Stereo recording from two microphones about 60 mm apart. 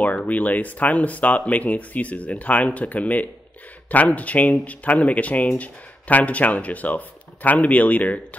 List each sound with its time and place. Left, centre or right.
0.0 s speech: left